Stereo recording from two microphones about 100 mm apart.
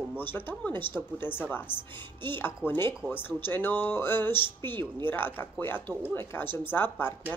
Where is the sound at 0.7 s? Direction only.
55° right (ahead or behind).